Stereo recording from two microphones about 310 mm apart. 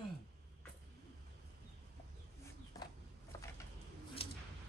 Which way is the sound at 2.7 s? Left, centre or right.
Centre.